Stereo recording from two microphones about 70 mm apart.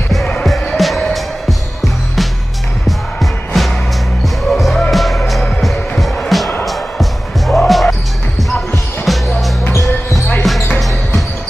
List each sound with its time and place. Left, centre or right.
0.5 s music: centre
3.2 s music: centre
9.0 s music: centre
9.7 s basketball bounce: left
10.4 s basketball bounce: centre